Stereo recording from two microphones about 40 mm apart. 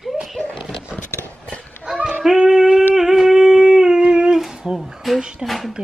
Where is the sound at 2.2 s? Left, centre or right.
Centre.